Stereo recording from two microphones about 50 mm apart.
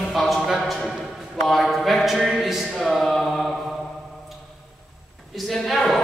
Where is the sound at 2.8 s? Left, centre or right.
Centre.